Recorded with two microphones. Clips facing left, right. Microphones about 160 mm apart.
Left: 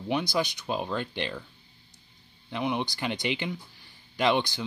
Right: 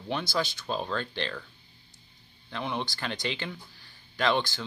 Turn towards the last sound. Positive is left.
turn(degrees=20)  # may be behind; listen again after turning